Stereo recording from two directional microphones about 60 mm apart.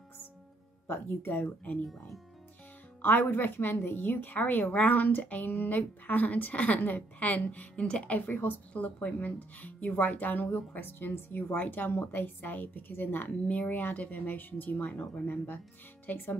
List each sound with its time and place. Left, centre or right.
0.8 s a woman's voice: left
1.4 s speech: left
3.0 s a woman's voice: left; by 8.2 s centre
8.3 s a woman's voice: left